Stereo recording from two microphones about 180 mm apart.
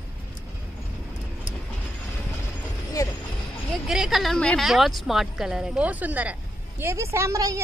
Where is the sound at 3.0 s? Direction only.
20° left (ahead or behind).